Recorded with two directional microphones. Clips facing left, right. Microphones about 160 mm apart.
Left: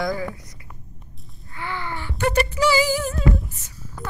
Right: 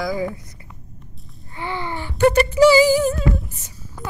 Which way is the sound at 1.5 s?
20° right (ahead or behind).